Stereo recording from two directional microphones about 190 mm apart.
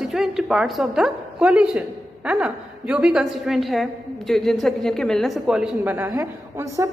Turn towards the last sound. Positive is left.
turn(degrees=-20)  # may be behind; listen again after turning